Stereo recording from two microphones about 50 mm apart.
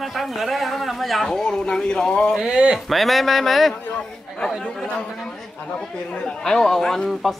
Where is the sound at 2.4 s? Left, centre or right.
Centre.